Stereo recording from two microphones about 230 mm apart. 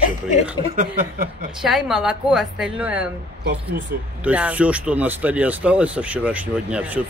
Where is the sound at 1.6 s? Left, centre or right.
Centre.